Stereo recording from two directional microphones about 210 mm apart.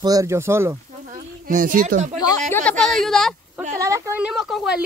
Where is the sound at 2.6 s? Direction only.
5° left (ahead or behind).